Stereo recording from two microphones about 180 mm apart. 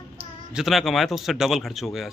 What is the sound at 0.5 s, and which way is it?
A man's voice, centre (ahead or behind).